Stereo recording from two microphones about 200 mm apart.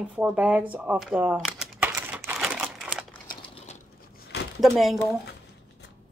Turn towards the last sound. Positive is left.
turn(degrees=0)  # may be behind; listen again after turning